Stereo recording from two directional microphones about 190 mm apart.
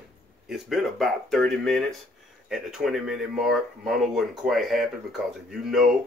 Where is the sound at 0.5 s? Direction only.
Centre (ahead or behind).